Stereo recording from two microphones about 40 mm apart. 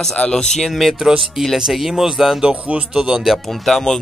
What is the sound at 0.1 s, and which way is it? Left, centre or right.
Speech, centre.